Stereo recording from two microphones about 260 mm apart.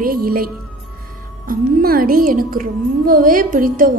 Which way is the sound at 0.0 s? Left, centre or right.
Right.